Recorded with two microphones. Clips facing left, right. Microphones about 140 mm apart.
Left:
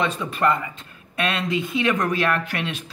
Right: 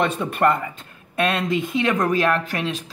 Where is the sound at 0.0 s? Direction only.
55° right (ahead or behind).